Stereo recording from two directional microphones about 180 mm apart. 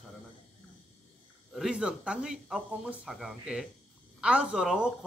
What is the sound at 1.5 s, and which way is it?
Speech, 5° right (ahead or behind).